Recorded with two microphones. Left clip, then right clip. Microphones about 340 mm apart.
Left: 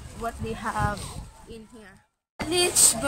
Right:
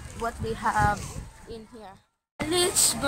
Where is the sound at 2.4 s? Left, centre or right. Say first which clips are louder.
Left 1 dB; centre.